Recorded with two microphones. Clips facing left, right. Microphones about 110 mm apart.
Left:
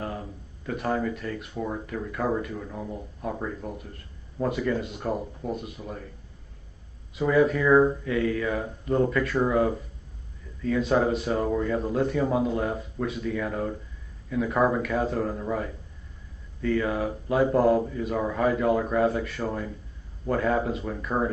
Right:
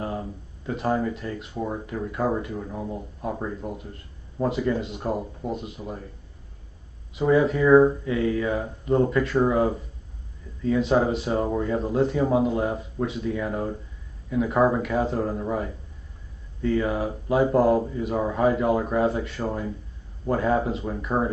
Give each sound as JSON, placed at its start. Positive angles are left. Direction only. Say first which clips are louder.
{"t": 0.7, "sound": "speech", "louder": "right 2 dB", "side_deg": -25}
{"t": 7.2, "sound": "speech", "louder": "right 2 dB", "side_deg": -25}